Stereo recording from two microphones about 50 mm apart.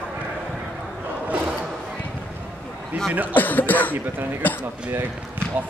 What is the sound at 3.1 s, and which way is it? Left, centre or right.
Speech, right.